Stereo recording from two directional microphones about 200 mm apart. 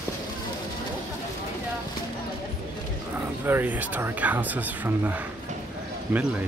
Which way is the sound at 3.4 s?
10° right (ahead or behind).